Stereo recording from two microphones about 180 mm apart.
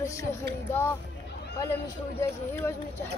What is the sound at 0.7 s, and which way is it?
Speech, 15° left (ahead or behind).